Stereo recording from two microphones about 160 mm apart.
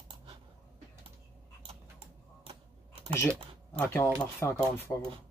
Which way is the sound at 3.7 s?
15° left (ahead or behind).